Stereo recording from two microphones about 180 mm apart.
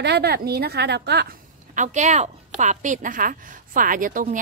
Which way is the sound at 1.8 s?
40° right (ahead or behind).